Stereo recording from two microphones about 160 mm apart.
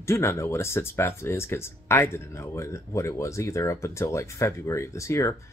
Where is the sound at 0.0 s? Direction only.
15° left (ahead or behind).